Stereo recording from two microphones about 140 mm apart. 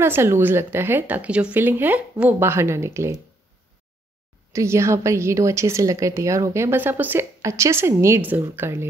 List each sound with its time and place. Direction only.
0.0 s speech: 15° right (ahead or behind)
4.5 s a woman's voice: 20° right (ahead or behind)